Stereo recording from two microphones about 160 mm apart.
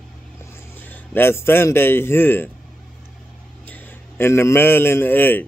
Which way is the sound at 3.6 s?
10° left (ahead or behind).